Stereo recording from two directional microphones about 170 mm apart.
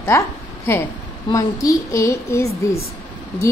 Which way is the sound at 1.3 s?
20° left (ahead or behind).